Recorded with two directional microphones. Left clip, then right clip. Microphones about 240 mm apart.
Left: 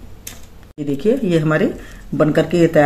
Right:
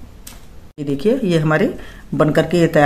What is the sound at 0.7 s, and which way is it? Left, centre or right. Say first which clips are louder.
Speech: even; right.